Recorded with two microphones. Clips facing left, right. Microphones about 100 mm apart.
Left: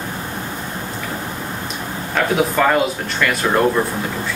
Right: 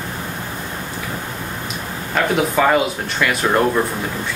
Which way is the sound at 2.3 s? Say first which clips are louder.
Even; 5° right (ahead or behind).